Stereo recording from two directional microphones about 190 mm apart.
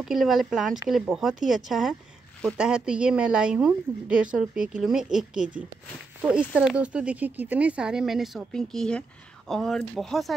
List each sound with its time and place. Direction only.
0.0 s a woman's voice: centre (ahead or behind)
6.5 s a woman's voice: 5° right (ahead or behind)